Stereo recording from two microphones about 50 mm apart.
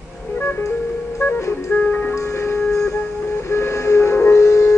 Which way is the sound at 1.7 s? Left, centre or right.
Left.